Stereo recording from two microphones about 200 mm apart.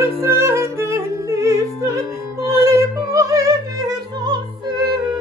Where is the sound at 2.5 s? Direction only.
15° right (ahead or behind).